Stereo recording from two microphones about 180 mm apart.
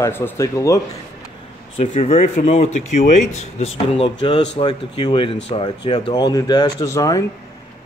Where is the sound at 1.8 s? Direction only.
35° left (ahead or behind).